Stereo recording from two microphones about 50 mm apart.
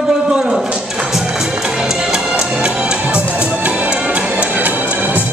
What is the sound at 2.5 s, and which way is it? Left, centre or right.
Music, centre.